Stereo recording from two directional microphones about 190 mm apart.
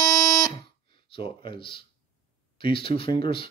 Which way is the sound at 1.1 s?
30° left (ahead or behind).